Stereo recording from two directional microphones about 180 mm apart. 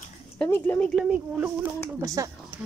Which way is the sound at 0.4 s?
10° left (ahead or behind).